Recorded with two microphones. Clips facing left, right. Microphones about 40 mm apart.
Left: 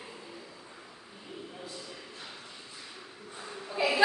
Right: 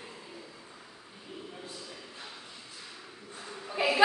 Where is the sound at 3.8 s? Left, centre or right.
Right.